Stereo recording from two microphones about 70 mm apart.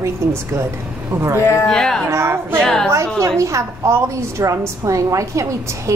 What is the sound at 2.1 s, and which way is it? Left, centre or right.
Speech, right.